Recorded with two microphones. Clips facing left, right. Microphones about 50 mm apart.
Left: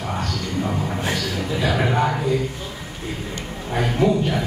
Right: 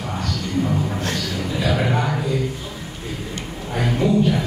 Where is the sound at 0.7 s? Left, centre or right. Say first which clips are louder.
Right 1 dB; centre.